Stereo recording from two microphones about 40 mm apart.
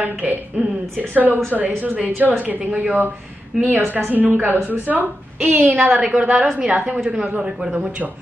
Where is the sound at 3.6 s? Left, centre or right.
Right.